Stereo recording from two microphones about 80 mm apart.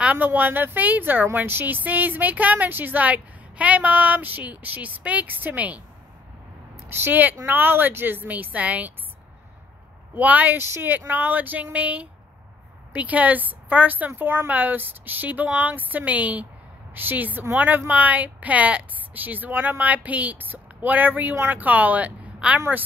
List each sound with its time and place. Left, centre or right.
0.0 s speech: centre
6.9 s speech: right
10.1 s speech: centre